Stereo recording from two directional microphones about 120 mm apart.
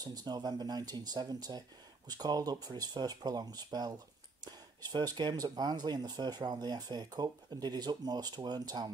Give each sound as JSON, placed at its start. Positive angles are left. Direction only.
{"t": 0.0, "sound": "speech", "side_deg": -35}